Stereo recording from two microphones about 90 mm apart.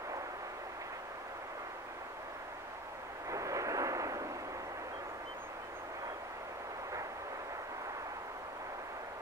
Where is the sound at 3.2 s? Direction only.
35° right (ahead or behind).